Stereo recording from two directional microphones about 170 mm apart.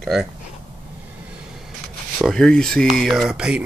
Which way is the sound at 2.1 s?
Centre (ahead or behind).